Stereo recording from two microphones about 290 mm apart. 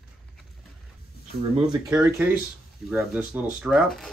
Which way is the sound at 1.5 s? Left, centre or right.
Centre.